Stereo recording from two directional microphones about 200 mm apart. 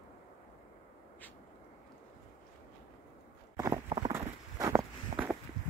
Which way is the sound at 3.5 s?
15° right (ahead or behind).